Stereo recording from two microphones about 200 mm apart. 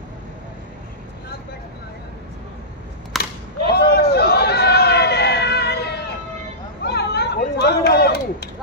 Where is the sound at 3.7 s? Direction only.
55° left (ahead or behind).